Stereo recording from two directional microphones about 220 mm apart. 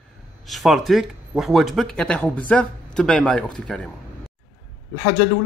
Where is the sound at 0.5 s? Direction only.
Centre (ahead or behind).